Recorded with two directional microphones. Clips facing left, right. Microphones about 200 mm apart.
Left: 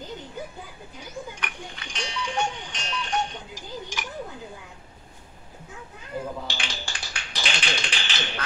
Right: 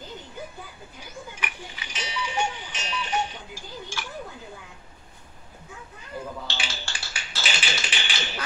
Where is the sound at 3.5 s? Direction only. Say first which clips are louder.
Left 2 dB; 15° left (ahead or behind).